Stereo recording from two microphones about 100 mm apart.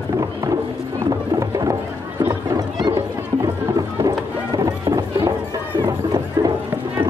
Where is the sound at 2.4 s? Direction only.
40° right (ahead or behind).